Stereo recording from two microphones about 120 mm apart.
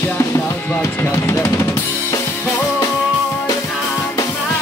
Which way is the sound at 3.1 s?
25° left (ahead or behind).